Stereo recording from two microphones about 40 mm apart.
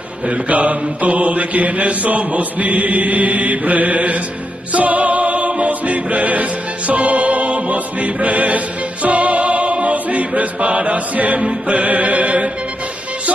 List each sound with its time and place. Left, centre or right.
0.5 s mantra: right
4.7 s music: right